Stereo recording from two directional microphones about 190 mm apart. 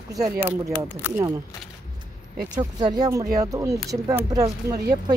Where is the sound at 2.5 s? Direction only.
20° right (ahead or behind).